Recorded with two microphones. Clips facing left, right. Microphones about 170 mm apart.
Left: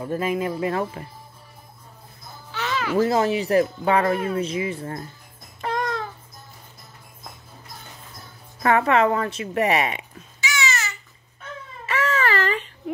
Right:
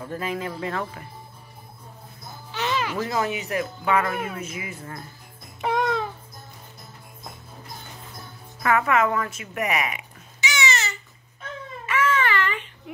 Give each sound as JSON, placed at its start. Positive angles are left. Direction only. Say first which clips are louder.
{"t": 0.0, "sound": "speech", "louder": "left 5 dB", "side_deg": 20}
{"t": 2.5, "sound": "a sound", "louder": "right 1 dB", "side_deg": -20}
{"t": 3.0, "sound": "speech", "louder": "left 6 dB", "side_deg": 30}
{"t": 8.6, "sound": "speech", "louder": "left 3 dB", "side_deg": 30}
{"t": 10.4, "sound": "babbling", "louder": "right 1 dB", "side_deg": -20}
{"t": 11.8, "sound": "baby cry", "louder": "even", "side_deg": 40}